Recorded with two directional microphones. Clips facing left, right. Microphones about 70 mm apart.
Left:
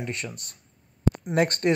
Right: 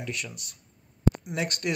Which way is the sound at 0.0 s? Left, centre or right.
Left.